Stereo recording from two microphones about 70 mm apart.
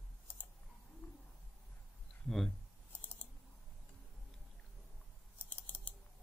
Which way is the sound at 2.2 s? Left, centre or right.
Centre.